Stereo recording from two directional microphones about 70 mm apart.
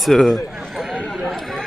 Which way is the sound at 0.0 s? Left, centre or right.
Centre.